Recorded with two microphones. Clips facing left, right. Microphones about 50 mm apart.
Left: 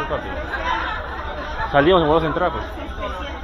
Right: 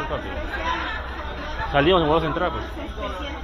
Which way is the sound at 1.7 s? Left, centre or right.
Left.